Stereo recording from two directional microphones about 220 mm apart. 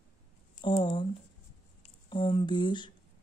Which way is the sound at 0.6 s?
20° left (ahead or behind).